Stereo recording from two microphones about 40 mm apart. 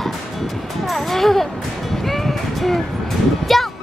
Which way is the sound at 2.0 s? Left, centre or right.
Centre.